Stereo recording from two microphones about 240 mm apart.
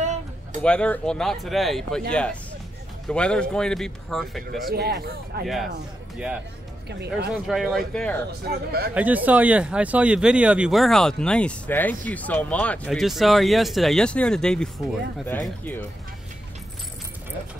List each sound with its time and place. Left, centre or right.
0.0 s music: right
0.6 s speech: centre
4.6 s speech: right
6.1 s speech: centre
6.9 s speech: right
7.4 s speech: centre
8.3 s speech: right
8.9 s speech: centre